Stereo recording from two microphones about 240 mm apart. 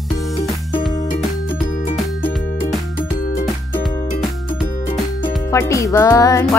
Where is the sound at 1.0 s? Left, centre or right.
Left.